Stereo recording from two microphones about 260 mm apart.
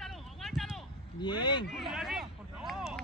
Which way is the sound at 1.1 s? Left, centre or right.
Centre.